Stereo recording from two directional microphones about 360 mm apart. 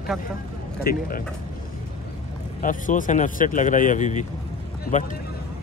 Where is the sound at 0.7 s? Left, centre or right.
Left.